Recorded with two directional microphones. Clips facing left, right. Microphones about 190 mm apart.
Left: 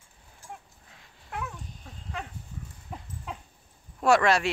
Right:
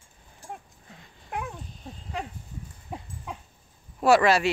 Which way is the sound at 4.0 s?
5° right (ahead or behind).